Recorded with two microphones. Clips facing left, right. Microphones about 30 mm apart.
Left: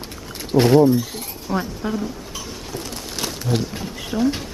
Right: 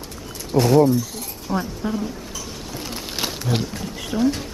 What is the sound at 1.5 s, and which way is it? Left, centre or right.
Speech, centre.